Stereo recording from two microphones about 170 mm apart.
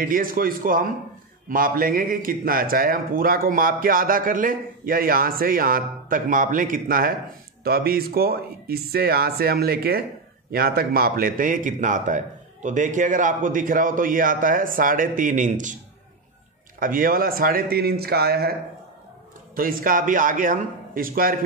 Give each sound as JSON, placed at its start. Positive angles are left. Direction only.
{"t": 0.0, "sound": "a man's voice", "side_deg": -55}
{"t": 16.8, "sound": "a man's voice", "side_deg": -55}
{"t": 19.5, "sound": "a man's voice", "side_deg": -55}